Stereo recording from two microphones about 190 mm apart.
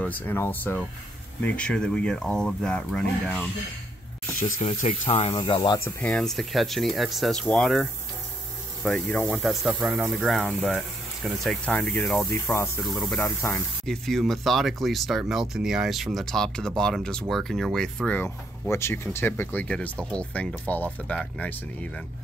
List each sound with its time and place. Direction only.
0.0 s speech: 10° left (ahead or behind)
4.6 s speech: 35° left (ahead or behind)
5.3 s speech: 20° left (ahead or behind)
5.9 s speech: 5° left (ahead or behind)
13.2 s speech: 15° left (ahead or behind)
13.8 s speech: centre (ahead or behind)